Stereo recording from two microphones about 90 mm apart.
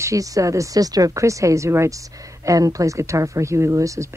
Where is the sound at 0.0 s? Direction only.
40° right (ahead or behind).